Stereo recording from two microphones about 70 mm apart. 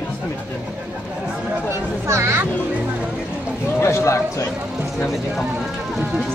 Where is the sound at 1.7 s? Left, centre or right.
Right.